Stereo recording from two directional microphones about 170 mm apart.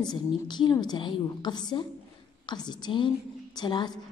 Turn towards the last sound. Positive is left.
turn(degrees=25)  # may be behind; listen again after turning